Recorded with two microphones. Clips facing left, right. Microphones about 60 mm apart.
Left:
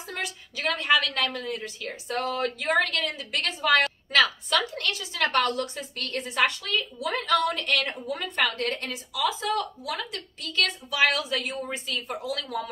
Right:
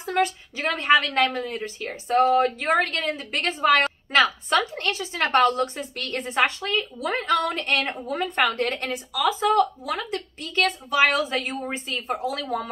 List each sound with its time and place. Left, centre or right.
0.0 s a woman's voice: right